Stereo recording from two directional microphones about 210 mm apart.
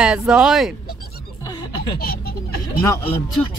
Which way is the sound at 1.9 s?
45° left (ahead or behind).